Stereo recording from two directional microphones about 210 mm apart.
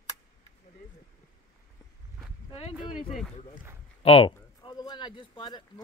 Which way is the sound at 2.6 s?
25° left (ahead or behind).